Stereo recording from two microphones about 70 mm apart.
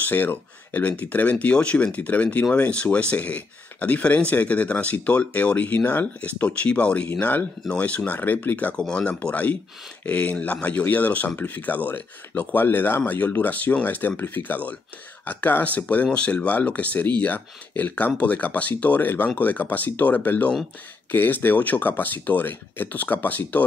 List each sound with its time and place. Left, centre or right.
0.0 s speech: left